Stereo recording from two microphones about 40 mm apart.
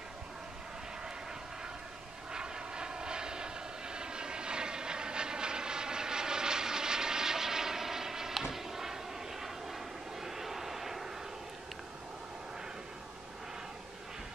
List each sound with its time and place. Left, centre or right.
2.3 s vehicle: centre